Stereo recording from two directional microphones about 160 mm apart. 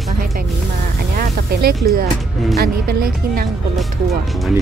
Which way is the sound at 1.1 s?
75° right (ahead or behind).